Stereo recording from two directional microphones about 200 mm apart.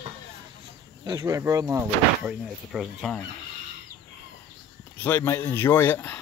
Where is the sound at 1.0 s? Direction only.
15° right (ahead or behind).